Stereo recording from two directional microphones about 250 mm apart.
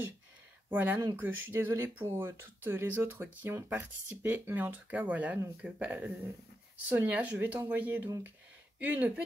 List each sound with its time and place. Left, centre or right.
0.7 s speech: centre